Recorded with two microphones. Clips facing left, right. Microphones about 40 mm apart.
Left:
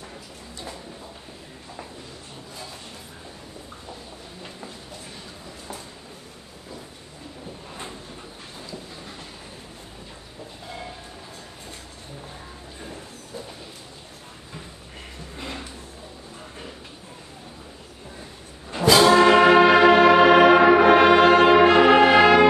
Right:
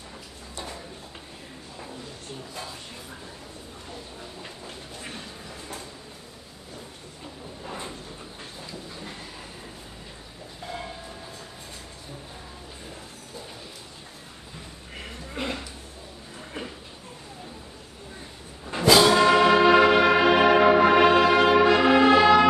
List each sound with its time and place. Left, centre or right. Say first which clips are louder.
19.0 s brass instrument: left 4 dB; left
22.1 s music: left 2 dB; left